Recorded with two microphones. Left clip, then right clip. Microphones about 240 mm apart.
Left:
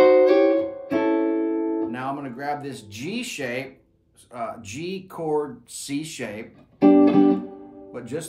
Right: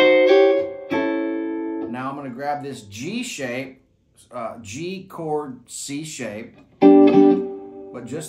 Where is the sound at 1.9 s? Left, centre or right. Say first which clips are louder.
Even; centre.